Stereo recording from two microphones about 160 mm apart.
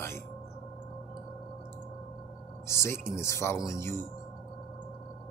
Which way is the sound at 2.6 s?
15° left (ahead or behind).